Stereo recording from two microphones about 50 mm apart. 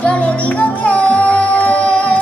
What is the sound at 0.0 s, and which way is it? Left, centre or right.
Music, left.